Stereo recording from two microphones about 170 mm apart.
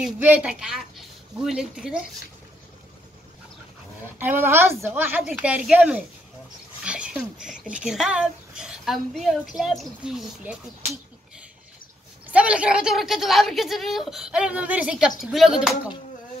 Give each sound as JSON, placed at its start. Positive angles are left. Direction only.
{"t": 0.0, "sound": "a woman's voice", "side_deg": -10}
{"t": 4.2, "sound": "a woman's voice", "side_deg": -10}
{"t": 12.3, "sound": "a woman's voice", "side_deg": -5}